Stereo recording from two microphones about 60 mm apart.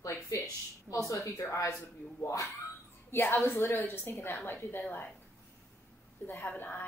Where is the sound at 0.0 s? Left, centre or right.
Left.